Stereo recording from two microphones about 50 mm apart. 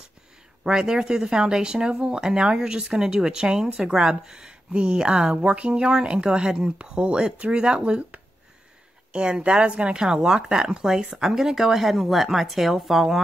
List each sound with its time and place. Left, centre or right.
0.7 s speech: centre